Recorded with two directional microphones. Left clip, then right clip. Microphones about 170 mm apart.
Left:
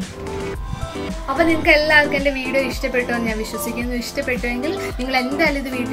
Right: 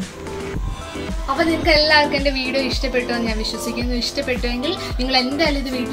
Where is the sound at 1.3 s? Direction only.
20° left (ahead or behind).